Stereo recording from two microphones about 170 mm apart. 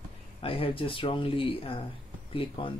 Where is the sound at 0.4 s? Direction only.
30° left (ahead or behind).